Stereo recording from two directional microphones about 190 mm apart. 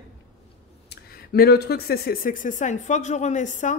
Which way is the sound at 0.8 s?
55° left (ahead or behind).